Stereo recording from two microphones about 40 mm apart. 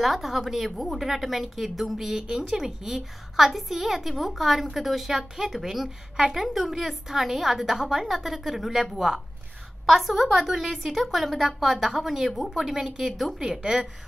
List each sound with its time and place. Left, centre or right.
0.0 s a woman's voice: centre
13.6 s a woman's voice: right